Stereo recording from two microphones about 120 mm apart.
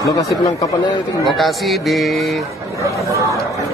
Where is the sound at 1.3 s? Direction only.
Centre (ahead or behind).